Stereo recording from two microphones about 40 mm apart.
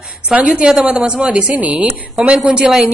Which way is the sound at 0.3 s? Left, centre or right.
Right.